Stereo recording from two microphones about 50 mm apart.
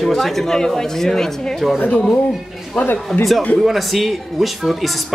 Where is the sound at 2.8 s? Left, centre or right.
Centre.